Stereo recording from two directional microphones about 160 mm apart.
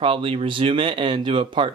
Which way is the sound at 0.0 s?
35° right (ahead or behind).